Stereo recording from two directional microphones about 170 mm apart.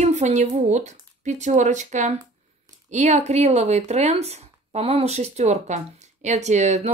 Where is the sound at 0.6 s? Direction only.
45° right (ahead or behind).